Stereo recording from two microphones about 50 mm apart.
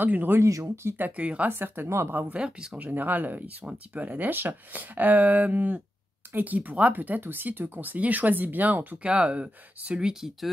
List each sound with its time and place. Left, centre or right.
0.0 s speech: right
0.4 s speech: right
0.9 s speech: right
1.5 s speech: right
2.3 s speech: centre
2.8 s speech: right
8.9 s speech: right